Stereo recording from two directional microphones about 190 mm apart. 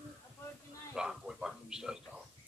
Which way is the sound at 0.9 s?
5° right (ahead or behind).